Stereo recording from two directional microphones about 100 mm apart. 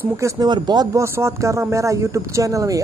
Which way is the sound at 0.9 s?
25° right (ahead or behind).